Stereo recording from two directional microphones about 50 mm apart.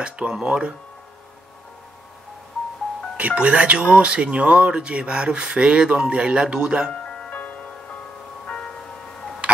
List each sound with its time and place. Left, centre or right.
0.0 s speech: right
3.2 s speech: right
7.2 s music: left
9.4 s music: right